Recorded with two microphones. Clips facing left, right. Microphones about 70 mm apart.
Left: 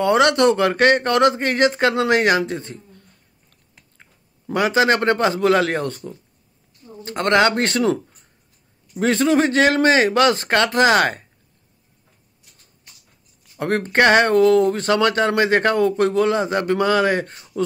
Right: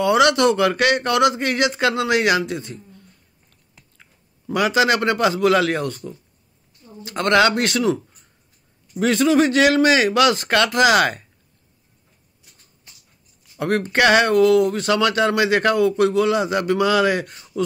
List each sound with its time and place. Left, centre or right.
0.0 s speech: left
4.0 s speech: left
7.2 s speech: left
9.0 s speech: left
13.6 s speech: left